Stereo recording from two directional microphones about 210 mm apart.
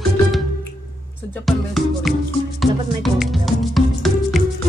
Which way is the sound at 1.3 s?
Centre (ahead or behind).